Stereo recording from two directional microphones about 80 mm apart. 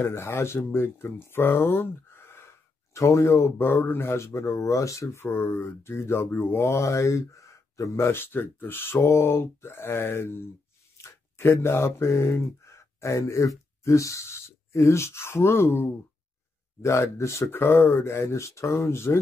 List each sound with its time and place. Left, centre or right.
0.0 s speech: left